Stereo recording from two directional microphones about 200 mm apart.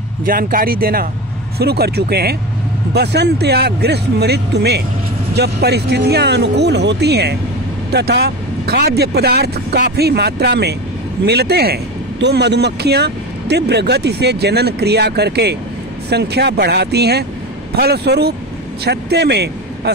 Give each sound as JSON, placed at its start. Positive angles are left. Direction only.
{"t": 0.2, "sound": "a man's voice", "side_deg": -45}